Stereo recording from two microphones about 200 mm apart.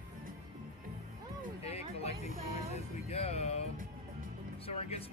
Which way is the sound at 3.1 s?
30° left (ahead or behind).